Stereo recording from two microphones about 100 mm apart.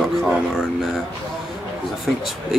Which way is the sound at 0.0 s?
Centre (ahead or behind).